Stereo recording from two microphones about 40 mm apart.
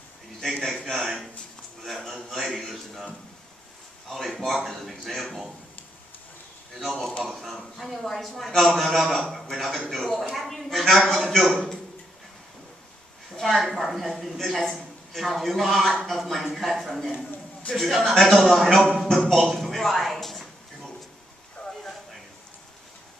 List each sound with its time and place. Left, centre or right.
0.4 s a man's voice: centre
2.0 s a man's voice: centre
2.3 s a man's voice: centre
4.1 s a man's voice: centre
6.8 s a man's voice: centre
11.5 s a man's voice: centre
13.3 s a sound: centre
13.6 s a man's voice: centre
19.2 s music: centre